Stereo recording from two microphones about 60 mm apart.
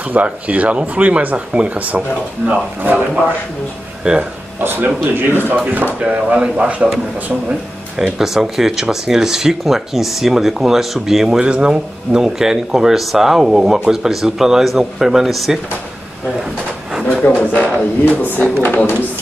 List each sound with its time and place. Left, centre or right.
0.1 s speech: right
4.0 s speech: centre
4.6 s speech: right
5.9 s speech: right
8.0 s speech: centre
17.1 s speech: left